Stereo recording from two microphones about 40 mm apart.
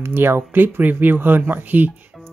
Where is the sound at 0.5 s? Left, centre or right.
Right.